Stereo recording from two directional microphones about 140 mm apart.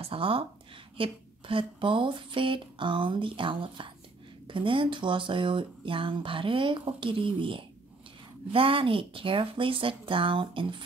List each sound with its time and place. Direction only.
0.0 s speech: 40° right (ahead or behind)